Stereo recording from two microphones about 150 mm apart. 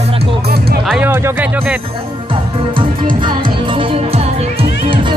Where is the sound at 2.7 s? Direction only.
35° right (ahead or behind).